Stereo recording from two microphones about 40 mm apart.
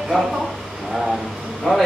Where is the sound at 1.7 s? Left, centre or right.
Centre.